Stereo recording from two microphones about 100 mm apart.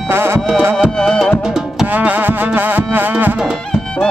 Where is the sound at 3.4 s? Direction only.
5° right (ahead or behind).